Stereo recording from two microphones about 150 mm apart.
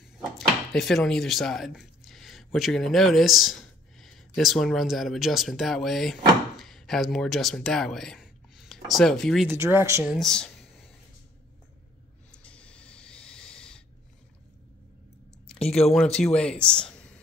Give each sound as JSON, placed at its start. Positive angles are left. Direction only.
{"t": 0.4, "sound": "speech", "side_deg": 0}
{"t": 9.5, "sound": "speech", "side_deg": -15}
{"t": 10.0, "sound": "a sound", "side_deg": 0}
{"t": 12.3, "sound": "snort", "side_deg": 10}
{"t": 15.4, "sound": "a sound", "side_deg": 5}
{"t": 15.9, "sound": "speech", "side_deg": 5}